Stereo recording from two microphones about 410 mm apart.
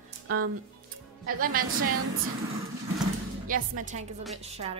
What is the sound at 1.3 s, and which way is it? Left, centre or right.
Speech, right.